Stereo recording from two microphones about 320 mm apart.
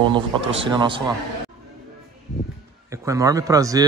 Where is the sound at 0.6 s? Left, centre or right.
Centre.